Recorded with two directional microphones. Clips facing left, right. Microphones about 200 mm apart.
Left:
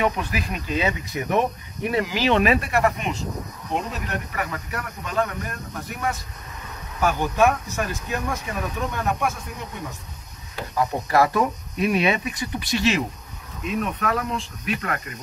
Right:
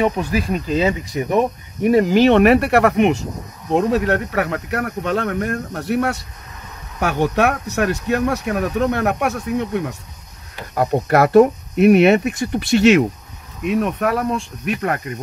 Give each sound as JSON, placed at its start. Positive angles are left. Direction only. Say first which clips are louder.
{"t": 0.0, "sound": "speech", "louder": "right 6 dB", "side_deg": -40}